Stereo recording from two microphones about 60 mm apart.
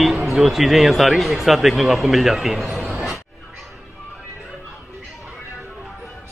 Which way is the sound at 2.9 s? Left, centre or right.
Centre.